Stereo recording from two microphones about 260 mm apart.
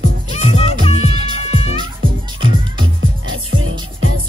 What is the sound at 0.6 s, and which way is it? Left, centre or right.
Music, left.